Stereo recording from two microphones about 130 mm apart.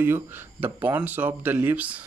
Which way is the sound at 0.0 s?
15° right (ahead or behind).